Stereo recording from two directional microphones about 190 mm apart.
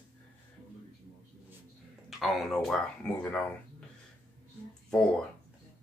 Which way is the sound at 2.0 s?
Centre (ahead or behind).